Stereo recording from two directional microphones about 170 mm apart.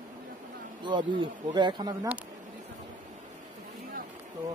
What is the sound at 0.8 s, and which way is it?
Speech, 25° right (ahead or behind).